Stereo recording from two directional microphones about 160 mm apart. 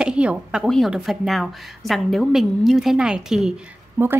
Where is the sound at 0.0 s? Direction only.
5° right (ahead or behind).